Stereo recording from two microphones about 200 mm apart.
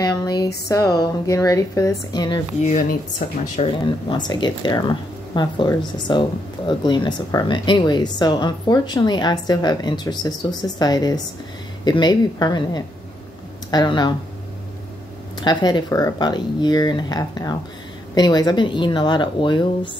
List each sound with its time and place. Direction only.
0.0 s a sound: 20° left (ahead or behind)
0.7 s a woman's voice: 15° left (ahead or behind)
2.6 s speech: 40° left (ahead or behind)
4.1 s a woman's voice: 20° left (ahead or behind)
15.4 s a woman's voice: 20° left (ahead or behind)